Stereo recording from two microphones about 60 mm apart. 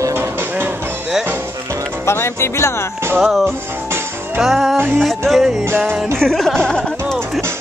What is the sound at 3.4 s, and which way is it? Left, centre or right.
Music, right.